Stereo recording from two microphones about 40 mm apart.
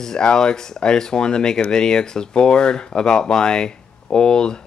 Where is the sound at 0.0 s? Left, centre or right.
Centre.